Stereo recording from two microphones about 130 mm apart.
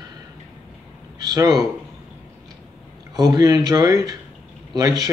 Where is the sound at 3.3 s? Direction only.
30° right (ahead or behind).